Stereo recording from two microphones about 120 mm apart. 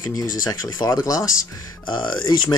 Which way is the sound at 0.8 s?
35° left (ahead or behind).